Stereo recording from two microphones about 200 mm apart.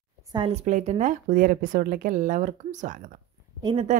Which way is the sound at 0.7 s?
35° right (ahead or behind).